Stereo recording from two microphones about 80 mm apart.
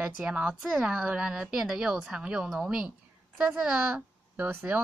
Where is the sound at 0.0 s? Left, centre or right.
Centre.